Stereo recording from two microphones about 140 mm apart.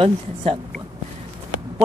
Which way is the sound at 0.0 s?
45° right (ahead or behind).